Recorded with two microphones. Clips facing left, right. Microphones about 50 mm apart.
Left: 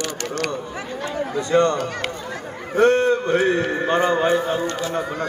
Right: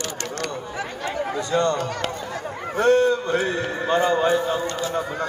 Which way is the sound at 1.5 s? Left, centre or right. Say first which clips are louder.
Left 4 dB; left.